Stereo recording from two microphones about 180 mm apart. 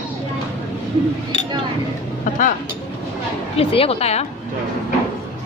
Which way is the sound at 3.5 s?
35° left (ahead or behind).